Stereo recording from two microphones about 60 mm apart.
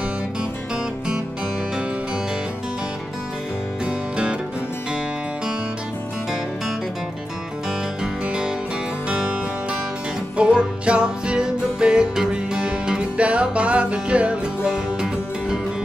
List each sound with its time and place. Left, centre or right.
3.8 s music: centre
8.0 s music: centre